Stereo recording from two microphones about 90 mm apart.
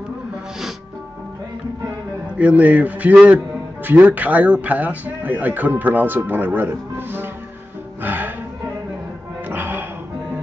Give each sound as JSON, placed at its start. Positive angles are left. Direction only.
{"t": 2.3, "sound": "a man's voice", "side_deg": -15}
{"t": 8.0, "sound": "music", "side_deg": -20}
{"t": 9.5, "sound": "music", "side_deg": -20}